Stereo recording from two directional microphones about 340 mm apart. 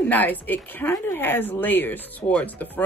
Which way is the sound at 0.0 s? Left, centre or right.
Centre.